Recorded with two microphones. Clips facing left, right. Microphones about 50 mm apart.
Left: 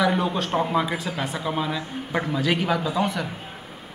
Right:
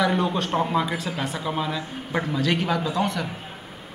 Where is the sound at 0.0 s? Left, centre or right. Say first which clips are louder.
Even; centre.